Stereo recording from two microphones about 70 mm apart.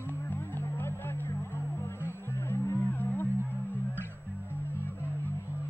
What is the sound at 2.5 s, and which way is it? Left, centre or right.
Music, left.